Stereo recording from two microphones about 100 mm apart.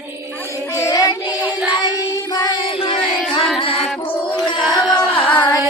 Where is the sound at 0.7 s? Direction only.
30° left (ahead or behind).